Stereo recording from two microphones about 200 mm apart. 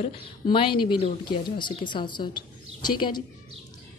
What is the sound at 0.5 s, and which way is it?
A woman's voice, 25° left (ahead or behind).